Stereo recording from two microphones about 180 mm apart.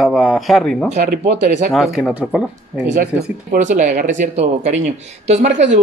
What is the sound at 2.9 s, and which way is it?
Speech, 45° right (ahead or behind).